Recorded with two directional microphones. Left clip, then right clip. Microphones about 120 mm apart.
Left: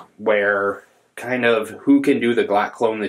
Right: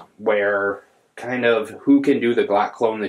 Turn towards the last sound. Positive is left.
turn(degrees=10)  # may be behind; listen again after turning